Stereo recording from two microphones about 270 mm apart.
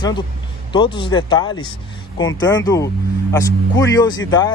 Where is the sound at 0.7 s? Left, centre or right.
Centre.